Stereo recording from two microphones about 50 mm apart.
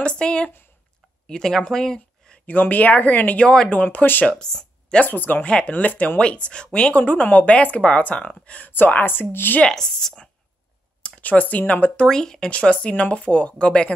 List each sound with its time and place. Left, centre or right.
0.0 s a sound: left
1.2 s speech: centre
2.4 s speech: left
3.4 s a woman's voice: centre
3.7 s speech: left
4.3 s speech: centre
5.0 s speech: left
5.4 s a woman's voice: left
8.7 s speech: left
9.7 s a woman's voice: centre
11.0 s speech: left
12.1 s a woman's voice: centre
12.4 s a woman's voice: left